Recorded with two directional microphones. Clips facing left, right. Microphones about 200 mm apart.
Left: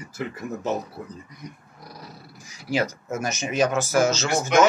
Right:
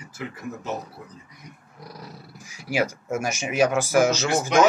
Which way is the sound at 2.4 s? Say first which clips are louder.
Even; 10° right (ahead or behind).